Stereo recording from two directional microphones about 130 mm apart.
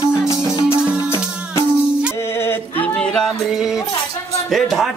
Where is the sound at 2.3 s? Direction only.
20° left (ahead or behind).